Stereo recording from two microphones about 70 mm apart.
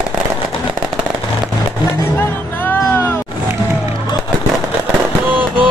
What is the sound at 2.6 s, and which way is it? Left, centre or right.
Music, left.